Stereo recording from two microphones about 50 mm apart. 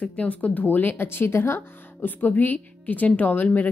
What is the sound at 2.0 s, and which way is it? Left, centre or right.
Speech, left.